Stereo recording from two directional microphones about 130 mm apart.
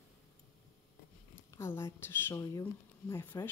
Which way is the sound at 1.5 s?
20° left (ahead or behind).